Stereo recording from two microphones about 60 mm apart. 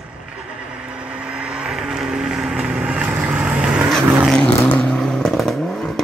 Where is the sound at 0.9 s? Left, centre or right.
Centre.